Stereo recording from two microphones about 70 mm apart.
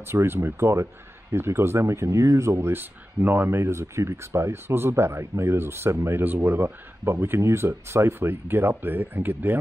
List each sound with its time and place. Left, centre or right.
0.0 s speech: right